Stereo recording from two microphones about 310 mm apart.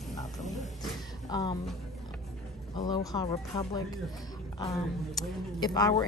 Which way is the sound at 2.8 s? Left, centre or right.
Centre.